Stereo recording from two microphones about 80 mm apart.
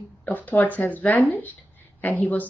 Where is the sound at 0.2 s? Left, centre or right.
Left.